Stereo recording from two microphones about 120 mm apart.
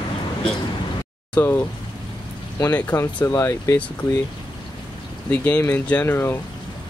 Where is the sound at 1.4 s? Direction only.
20° left (ahead or behind).